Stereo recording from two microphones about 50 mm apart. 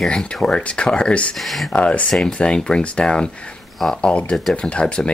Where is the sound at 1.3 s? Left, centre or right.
Centre.